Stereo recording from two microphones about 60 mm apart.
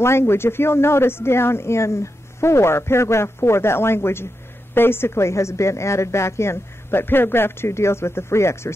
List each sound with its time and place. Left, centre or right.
0.0 s a woman's voice: left